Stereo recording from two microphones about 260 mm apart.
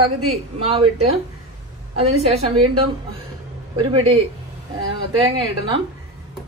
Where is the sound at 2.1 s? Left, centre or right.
Right.